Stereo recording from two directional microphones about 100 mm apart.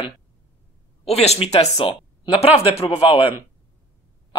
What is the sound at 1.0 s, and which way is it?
Speech, 90° left.